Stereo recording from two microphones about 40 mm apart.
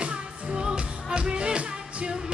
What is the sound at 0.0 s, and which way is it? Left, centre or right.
Music, right.